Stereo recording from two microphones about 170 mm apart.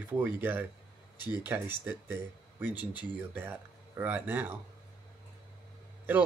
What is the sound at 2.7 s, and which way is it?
Speech, 25° left (ahead or behind).